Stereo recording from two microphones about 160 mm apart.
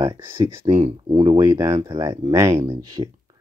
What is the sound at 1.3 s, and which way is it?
Speech, 20° right (ahead or behind).